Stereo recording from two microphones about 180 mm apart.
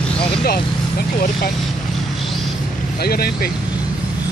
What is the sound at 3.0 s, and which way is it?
Speech, 60° left (ahead or behind).